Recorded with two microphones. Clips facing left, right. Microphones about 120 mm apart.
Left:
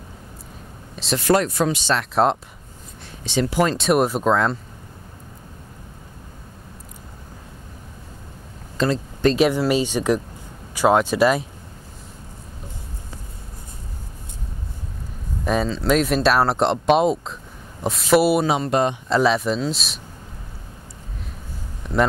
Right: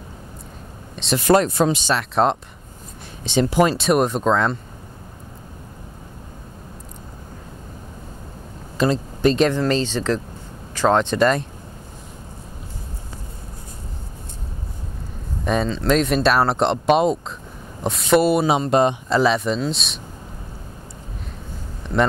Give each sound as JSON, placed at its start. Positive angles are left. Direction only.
{"t": 0.9, "sound": "speech", "side_deg": 0}
{"t": 1.2, "sound": "speech", "side_deg": -25}
{"t": 1.9, "sound": "speech", "side_deg": 0}
{"t": 3.3, "sound": "speech", "side_deg": -25}
{"t": 3.7, "sound": "speech", "side_deg": 0}
{"t": 8.7, "sound": "a sound", "side_deg": -15}
{"t": 9.3, "sound": "speech", "side_deg": 10}
{"t": 15.4, "sound": "speech", "side_deg": 0}
{"t": 18.4, "sound": "speech", "side_deg": -20}
{"t": 19.0, "sound": "speech", "side_deg": 0}
{"t": 21.8, "sound": "a sound", "side_deg": 5}